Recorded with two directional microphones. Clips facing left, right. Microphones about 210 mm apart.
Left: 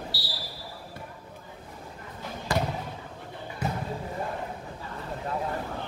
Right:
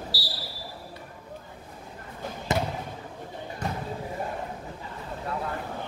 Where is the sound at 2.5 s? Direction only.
20° right (ahead or behind).